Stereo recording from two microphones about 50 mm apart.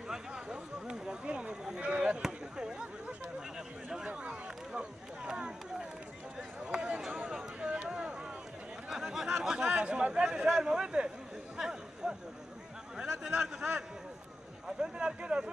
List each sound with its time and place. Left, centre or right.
0.3 s a sound: centre
6.6 s run: centre
7.6 s a sound: right
9.4 s a man's voice: centre
9.7 s speech: right
10.2 s a man's voice: centre
11.5 s chatter: centre
13.3 s a man's voice: right
14.7 s a man's voice: centre